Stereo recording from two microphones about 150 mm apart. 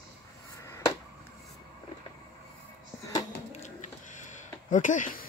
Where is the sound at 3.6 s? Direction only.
55° left (ahead or behind).